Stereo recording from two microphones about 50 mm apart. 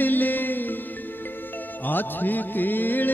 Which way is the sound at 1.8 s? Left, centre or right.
Left.